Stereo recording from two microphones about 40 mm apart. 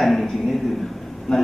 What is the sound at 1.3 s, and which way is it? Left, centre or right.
Speech, centre.